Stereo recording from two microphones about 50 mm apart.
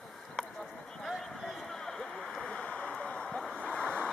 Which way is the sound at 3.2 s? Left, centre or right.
Centre.